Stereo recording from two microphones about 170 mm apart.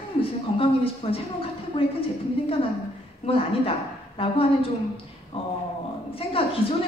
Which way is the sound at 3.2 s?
35° left (ahead or behind).